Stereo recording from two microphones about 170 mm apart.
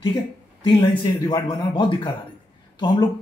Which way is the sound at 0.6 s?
30° left (ahead or behind).